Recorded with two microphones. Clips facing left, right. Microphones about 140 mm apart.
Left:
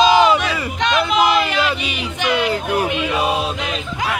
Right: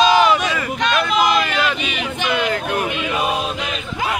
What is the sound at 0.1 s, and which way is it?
Crowd, 15° left (ahead or behind).